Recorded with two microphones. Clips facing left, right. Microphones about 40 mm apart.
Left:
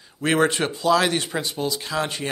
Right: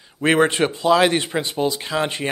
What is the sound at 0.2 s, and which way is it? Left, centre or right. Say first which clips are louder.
Speech: right 3 dB; right.